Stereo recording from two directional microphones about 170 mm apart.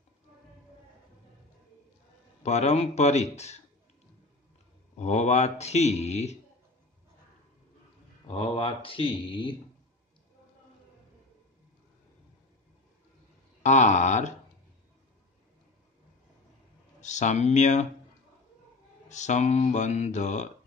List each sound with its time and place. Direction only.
2.4 s speech: 40° left (ahead or behind)
4.9 s speech: 40° left (ahead or behind)
8.3 s speech: 30° left (ahead or behind)
13.6 s speech: 45° left (ahead or behind)
17.0 s speech: 45° left (ahead or behind)
19.0 s speech: 45° left (ahead or behind)